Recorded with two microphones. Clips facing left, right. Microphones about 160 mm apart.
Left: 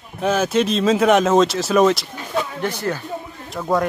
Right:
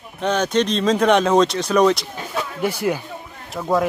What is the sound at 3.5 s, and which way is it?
Speech, centre (ahead or behind).